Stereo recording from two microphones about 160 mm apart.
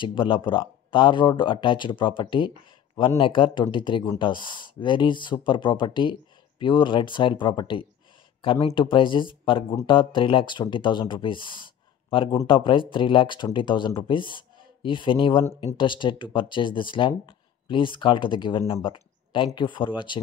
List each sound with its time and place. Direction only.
0.0 s speech: 30° left (ahead or behind)